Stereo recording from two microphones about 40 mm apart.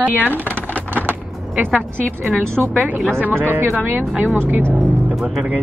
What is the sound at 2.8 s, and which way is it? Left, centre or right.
Speech, right.